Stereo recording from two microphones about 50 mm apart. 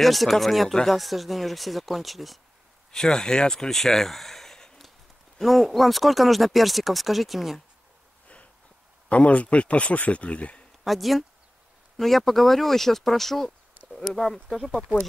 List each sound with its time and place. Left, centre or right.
0.0 s speech: centre
2.9 s speech: centre
5.4 s speech: centre
9.1 s a man's voice: left
10.8 s speech: centre